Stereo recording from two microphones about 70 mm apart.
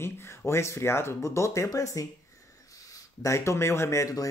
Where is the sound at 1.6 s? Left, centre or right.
Left.